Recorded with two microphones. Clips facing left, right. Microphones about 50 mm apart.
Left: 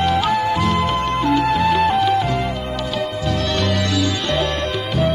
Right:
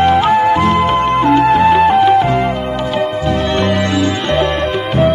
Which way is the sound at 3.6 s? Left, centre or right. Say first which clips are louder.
Right 6 dB; right.